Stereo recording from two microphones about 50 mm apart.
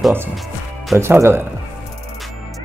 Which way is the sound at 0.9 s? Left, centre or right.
Right.